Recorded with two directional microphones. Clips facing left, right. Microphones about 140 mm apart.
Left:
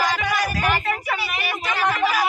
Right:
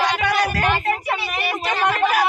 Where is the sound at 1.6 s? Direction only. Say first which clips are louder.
Right 2 dB; 65° right (ahead or behind).